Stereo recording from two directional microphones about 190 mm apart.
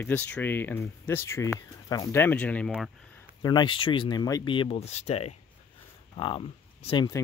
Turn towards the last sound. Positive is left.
turn(degrees=20)  # may be behind; listen again after turning